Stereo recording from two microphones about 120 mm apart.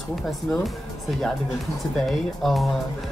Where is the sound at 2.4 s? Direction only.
Centre (ahead or behind).